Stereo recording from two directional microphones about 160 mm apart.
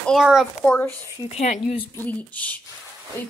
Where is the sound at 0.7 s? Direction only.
10° left (ahead or behind).